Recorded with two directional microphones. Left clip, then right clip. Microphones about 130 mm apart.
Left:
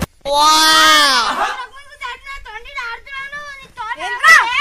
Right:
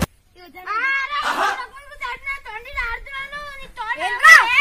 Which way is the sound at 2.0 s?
10° right (ahead or behind).